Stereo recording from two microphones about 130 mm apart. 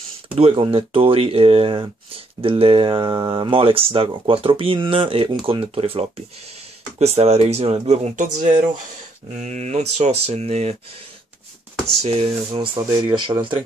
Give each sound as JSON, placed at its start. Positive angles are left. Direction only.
{"t": 0.4, "sound": "speech", "side_deg": -45}
{"t": 12.0, "sound": "speech", "side_deg": -55}
{"t": 12.5, "sound": "speech", "side_deg": -35}